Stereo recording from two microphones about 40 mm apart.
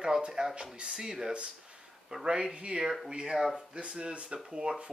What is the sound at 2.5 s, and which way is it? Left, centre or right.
Speech, right.